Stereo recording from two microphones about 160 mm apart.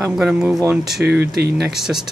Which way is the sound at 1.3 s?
90° right.